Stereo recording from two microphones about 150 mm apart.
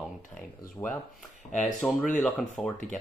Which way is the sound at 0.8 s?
20° left (ahead or behind).